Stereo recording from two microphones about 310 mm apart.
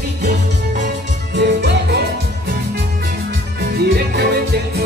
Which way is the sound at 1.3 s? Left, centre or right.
Right.